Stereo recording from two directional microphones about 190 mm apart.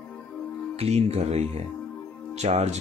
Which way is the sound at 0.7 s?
35° right (ahead or behind).